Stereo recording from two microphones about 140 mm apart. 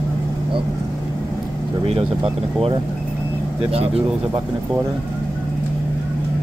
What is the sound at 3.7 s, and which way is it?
Speech, 45° right (ahead or behind).